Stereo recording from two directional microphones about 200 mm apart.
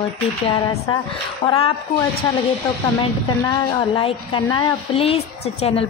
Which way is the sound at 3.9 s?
25° left (ahead or behind).